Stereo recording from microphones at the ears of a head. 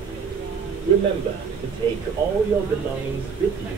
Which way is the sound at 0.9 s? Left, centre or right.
Right.